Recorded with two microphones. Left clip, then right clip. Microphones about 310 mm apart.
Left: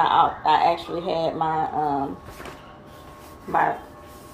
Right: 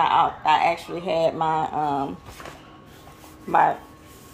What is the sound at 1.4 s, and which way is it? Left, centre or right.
Speech, right.